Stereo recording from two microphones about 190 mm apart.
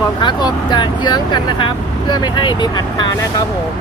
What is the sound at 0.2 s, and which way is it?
Speech, 25° left (ahead or behind).